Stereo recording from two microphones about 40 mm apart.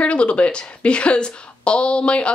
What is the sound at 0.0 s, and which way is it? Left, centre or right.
Speech, left.